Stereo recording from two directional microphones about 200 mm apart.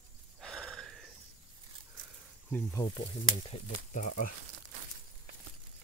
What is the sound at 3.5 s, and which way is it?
Speech, 40° left (ahead or behind).